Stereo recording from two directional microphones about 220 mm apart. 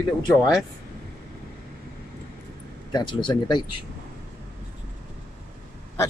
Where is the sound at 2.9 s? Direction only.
20° left (ahead or behind).